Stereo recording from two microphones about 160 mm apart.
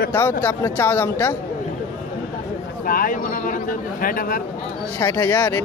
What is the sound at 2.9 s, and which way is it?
Speech, 60° left (ahead or behind).